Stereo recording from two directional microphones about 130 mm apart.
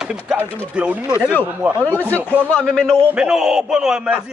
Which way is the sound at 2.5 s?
5° left (ahead or behind).